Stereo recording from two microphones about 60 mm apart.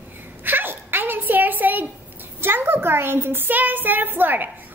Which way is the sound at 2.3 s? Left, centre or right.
Right.